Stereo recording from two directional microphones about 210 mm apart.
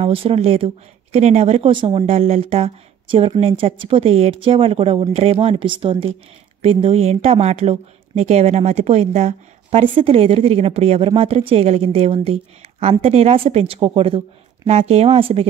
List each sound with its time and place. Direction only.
0.0 s speech: 25° right (ahead or behind)